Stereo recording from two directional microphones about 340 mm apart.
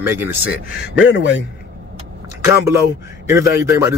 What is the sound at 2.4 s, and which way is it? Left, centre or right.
Speech, centre.